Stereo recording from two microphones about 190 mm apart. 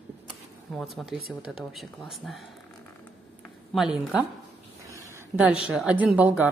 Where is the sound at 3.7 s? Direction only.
5° right (ahead or behind).